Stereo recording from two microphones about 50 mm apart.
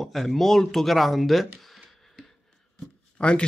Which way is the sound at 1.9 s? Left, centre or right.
Centre.